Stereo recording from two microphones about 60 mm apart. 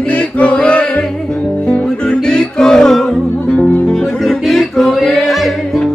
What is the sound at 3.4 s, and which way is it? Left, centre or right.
Music, centre.